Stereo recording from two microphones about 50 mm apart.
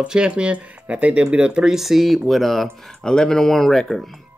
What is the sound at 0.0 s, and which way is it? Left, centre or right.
Speech, centre.